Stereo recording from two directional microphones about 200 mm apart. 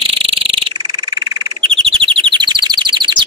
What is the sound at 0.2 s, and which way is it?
Frog, 25° right (ahead or behind).